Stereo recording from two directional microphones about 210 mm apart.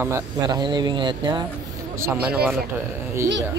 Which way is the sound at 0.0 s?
15° right (ahead or behind).